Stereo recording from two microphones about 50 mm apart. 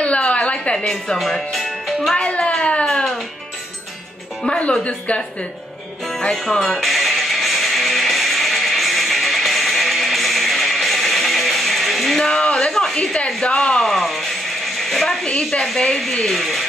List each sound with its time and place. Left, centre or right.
0.0 s a sound: left
0.7 s a woman's voice: centre
2.1 s speech: left
4.5 s speech: left
6.0 s music: centre
12.9 s speech: centre
13.7 s a sound: centre
15.2 s a woman's voice: centre